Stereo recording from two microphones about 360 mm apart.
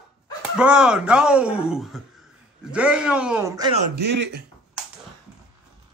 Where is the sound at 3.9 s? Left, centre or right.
Right.